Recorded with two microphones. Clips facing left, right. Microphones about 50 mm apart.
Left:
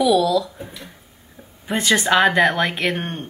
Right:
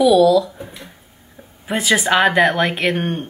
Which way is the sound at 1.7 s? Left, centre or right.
Centre.